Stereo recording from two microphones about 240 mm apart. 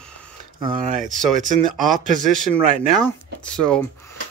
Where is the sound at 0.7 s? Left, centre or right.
Right.